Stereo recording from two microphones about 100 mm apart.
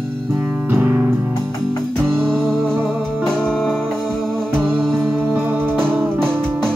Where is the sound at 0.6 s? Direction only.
20° right (ahead or behind).